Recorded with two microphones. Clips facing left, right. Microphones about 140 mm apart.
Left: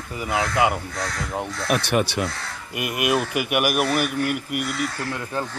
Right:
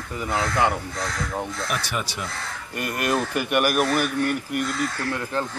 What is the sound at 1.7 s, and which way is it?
Speech, 65° left (ahead or behind).